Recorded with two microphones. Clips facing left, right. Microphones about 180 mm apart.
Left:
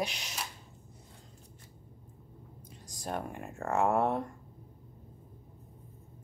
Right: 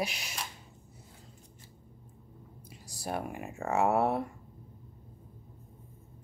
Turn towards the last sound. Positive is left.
turn(degrees=-5)  # may be behind; listen again after turning